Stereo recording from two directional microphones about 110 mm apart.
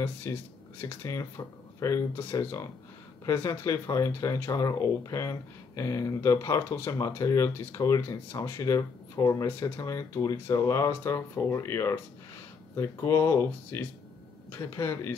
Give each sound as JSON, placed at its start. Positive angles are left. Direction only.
{"t": 0.0, "sound": "speech", "side_deg": 25}